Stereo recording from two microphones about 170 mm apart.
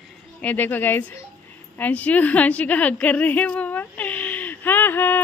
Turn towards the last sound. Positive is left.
turn(degrees=10)  # may be behind; listen again after turning